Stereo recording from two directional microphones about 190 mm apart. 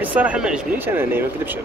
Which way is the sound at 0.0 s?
10° right (ahead or behind).